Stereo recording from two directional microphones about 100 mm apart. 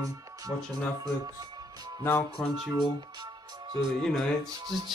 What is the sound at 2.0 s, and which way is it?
Speech, 20° left (ahead or behind).